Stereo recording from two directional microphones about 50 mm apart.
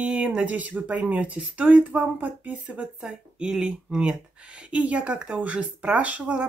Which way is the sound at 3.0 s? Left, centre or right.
Centre.